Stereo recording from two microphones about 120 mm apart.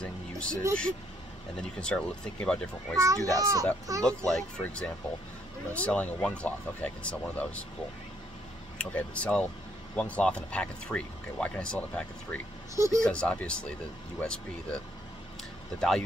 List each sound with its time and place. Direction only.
0.0 s a sound: 10° left (ahead or behind)
1.6 s speech: 5° left (ahead or behind)
3.0 s a child's voice: 30° right (ahead or behind)
4.0 s speech: 5° left (ahead or behind)
8.7 s speech: 10° left (ahead or behind)
12.7 s a child's voice: 25° right (ahead or behind)
13.0 s speech: 10° left (ahead or behind)